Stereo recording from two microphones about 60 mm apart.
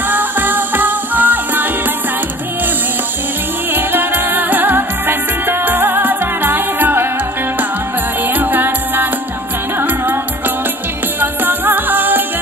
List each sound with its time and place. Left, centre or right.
0.1 s music: right
3.7 s music: right
8.4 s music: right
11.1 s music: right